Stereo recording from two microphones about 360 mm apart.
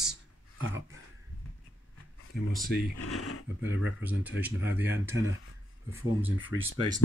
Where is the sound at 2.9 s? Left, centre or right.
Left.